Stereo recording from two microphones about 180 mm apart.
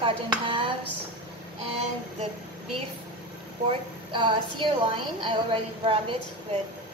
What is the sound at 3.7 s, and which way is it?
A woman's voice, 25° right (ahead or behind).